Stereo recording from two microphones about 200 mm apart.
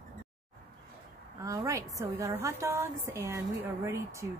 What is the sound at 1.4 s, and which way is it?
A woman's voice, 15° right (ahead or behind).